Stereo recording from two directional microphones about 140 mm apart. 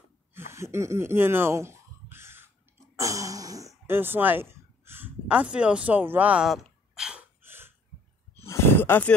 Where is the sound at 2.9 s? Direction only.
25° right (ahead or behind); by 7.2 s 5° right (ahead or behind).